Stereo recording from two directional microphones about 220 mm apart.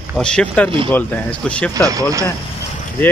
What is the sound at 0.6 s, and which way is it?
Speech, 25° right (ahead or behind).